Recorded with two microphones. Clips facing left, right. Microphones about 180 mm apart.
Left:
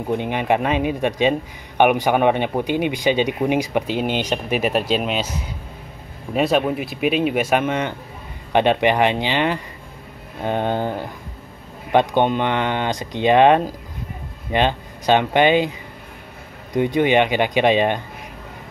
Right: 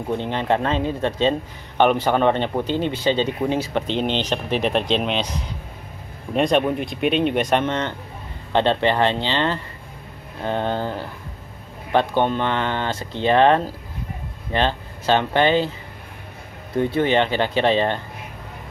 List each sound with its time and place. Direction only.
0.1 s speech: 15° left (ahead or behind)
16.7 s speech: 15° left (ahead or behind)